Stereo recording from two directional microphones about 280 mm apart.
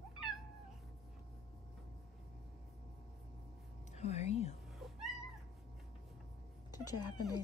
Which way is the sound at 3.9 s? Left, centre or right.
Left.